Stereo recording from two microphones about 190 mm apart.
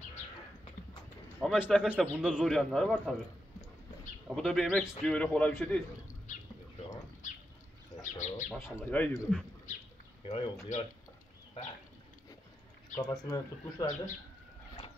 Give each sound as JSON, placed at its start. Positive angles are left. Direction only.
{"t": 1.4, "sound": "a man's voice", "side_deg": 5}
{"t": 4.4, "sound": "a man's voice", "side_deg": 5}
{"t": 7.2, "sound": "a sound", "side_deg": 40}
{"t": 8.0, "sound": "bird", "side_deg": 40}
{"t": 8.5, "sound": "a man's voice", "side_deg": 0}
{"t": 8.7, "sound": "a man's voice", "side_deg": 10}
{"t": 10.2, "sound": "speech", "side_deg": 25}
{"t": 10.7, "sound": "speech", "side_deg": 40}
{"t": 13.0, "sound": "speech", "side_deg": 20}